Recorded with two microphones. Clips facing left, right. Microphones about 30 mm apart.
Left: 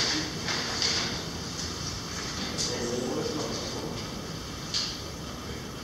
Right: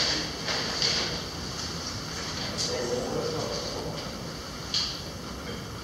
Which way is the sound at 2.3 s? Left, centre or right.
Centre.